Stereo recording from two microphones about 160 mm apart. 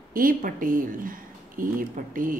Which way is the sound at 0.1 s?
60° right (ahead or behind).